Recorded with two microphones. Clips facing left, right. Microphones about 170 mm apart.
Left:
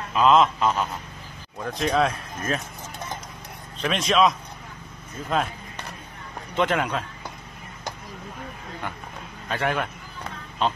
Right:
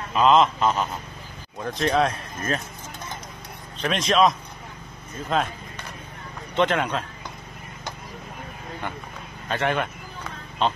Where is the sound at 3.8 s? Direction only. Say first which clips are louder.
Right 1 dB; centre (ahead or behind).